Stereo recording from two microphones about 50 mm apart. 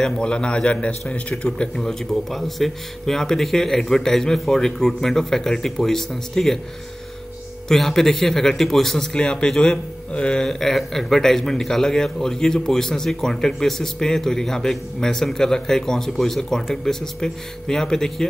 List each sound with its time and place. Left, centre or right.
0.0 s a man's voice: centre
7.6 s a man's voice: centre
10.1 s a man's voice: left
10.4 s a man's voice: centre